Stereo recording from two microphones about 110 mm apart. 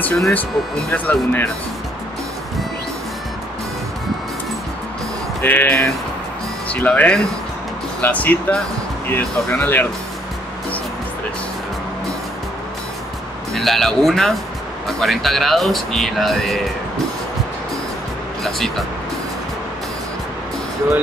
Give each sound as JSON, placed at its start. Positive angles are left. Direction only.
{"t": 0.0, "sound": "speech", "side_deg": 10}
{"t": 5.4, "sound": "speech", "side_deg": 15}
{"t": 13.5, "sound": "speech", "side_deg": 0}
{"t": 18.4, "sound": "speech", "side_deg": 0}